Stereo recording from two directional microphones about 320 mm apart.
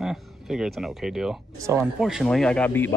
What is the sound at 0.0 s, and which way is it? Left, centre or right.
Speech, centre.